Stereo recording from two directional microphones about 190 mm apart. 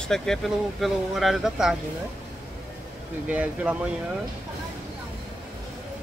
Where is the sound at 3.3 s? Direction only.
10° right (ahead or behind).